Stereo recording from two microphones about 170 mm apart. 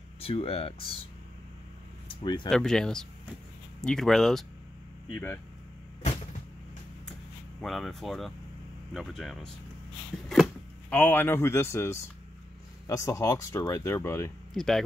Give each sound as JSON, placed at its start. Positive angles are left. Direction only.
{"t": 0.2, "sound": "speech", "side_deg": 35}
{"t": 2.0, "sound": "speech", "side_deg": 25}
{"t": 2.5, "sound": "speech", "side_deg": 5}
{"t": 5.1, "sound": "speech", "side_deg": 15}
{"t": 7.6, "sound": "speech", "side_deg": 0}
{"t": 10.2, "sound": "a sound", "side_deg": 0}
{"t": 10.9, "sound": "speech", "side_deg": 10}
{"t": 14.5, "sound": "speech", "side_deg": 0}